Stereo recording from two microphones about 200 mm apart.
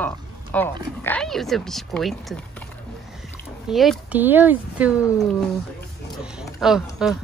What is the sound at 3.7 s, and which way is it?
Speech, centre (ahead or behind).